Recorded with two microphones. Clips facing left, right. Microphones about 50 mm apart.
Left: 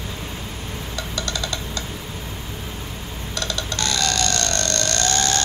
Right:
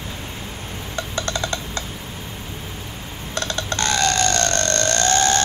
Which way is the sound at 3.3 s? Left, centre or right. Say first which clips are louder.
Right 3 dB; right.